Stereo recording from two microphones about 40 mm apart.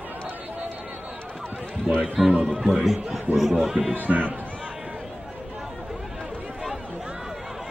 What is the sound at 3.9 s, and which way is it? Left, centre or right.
Speech, right.